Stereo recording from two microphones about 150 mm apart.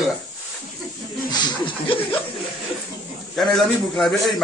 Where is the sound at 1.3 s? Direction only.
35° left (ahead or behind).